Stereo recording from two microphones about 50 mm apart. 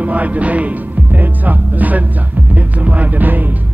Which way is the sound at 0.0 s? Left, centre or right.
Right.